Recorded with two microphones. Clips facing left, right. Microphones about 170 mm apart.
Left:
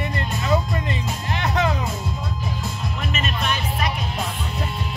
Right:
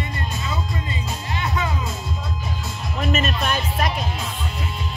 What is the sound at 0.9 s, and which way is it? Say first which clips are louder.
Music: left 2 dB; 75° left (ahead or behind).